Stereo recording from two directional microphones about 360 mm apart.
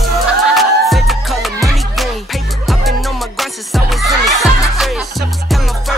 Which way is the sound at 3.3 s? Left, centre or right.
Centre.